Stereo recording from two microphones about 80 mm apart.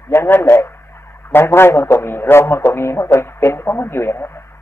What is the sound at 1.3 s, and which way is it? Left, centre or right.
Speech, left.